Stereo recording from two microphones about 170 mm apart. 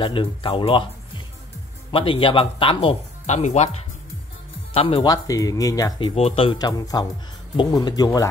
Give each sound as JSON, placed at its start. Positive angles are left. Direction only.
{"t": 0.0, "sound": "speech", "side_deg": 30}
{"t": 4.7, "sound": "speech", "side_deg": 35}
{"t": 5.0, "sound": "speech", "side_deg": 20}